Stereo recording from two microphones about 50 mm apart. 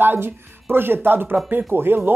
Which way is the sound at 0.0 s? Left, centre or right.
Right.